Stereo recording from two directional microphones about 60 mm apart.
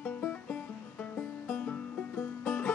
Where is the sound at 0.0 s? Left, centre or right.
Left.